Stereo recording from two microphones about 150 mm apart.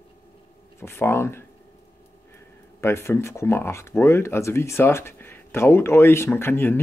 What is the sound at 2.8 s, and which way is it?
Speech, 20° left (ahead or behind).